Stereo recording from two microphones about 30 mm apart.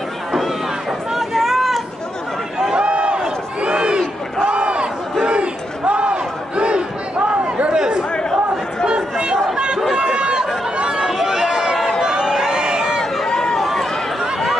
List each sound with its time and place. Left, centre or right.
1.1 s a sound: centre
2.7 s a sound: right
3.6 s crowd: right
5.2 s battle cry: right
7.7 s chatter: right
9.2 s chatter: right
11.1 s run: centre
12.4 s a sound: right
13.2 s run: centre
13.6 s run: centre